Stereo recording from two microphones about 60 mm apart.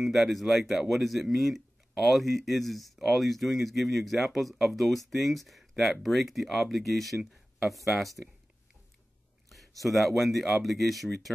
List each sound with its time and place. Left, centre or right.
0.0 s speech: centre
9.5 s speech: centre